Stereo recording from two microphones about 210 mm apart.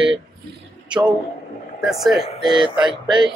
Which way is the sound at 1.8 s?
Centre (ahead or behind).